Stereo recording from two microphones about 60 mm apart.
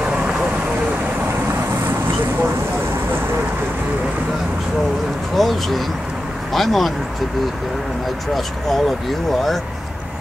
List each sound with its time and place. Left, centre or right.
0.0 s vehicle: centre
5.3 s a sound: centre
6.5 s speech: centre